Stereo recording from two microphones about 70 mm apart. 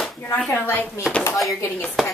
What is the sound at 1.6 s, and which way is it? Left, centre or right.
Speech, left.